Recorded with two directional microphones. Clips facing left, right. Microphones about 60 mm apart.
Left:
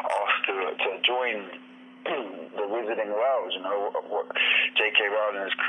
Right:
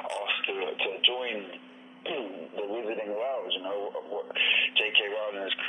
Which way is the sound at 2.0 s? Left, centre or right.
Left.